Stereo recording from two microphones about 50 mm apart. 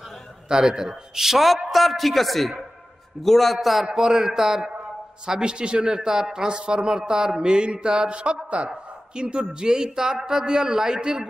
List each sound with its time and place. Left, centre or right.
0.5 s a man's voice: centre